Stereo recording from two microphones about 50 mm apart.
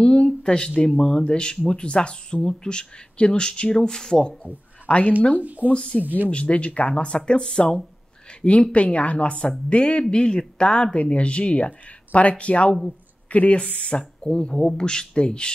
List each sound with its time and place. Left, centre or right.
0.0 s a sound: centre
0.4 s speech: centre
4.8 s speech: left
5.4 s speech: right
5.7 s speech: left